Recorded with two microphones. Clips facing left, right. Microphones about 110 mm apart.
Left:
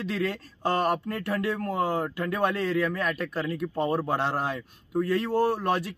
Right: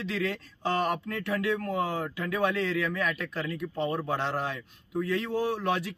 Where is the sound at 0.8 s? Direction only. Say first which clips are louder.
Left 3 dB; 45° left (ahead or behind).